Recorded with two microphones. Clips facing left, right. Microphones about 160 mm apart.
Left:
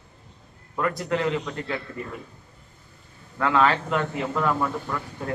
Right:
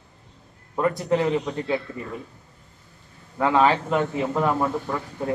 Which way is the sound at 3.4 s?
20° right (ahead or behind).